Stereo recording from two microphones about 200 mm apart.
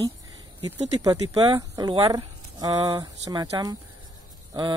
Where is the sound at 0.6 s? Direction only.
30° right (ahead or behind).